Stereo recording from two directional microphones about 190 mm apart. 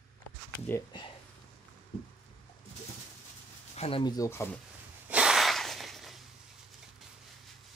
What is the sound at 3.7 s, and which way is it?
Speech, 35° left (ahead or behind).